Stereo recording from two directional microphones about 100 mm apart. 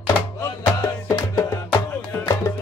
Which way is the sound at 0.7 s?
25° left (ahead or behind).